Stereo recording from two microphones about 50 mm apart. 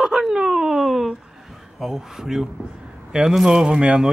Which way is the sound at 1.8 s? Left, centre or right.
Centre.